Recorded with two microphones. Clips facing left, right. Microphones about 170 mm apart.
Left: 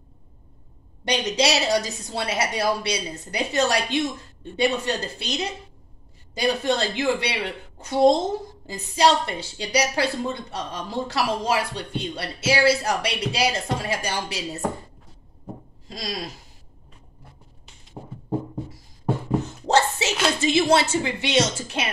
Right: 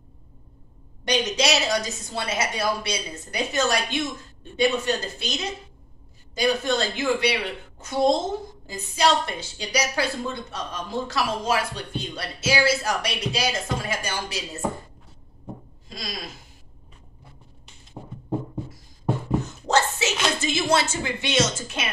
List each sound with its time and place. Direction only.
1.0 s a woman's voice: 30° left (ahead or behind)
15.9 s a woman's voice: 35° left (ahead or behind)
19.4 s a sound: 30° left (ahead or behind)
20.3 s a woman's voice: 30° left (ahead or behind)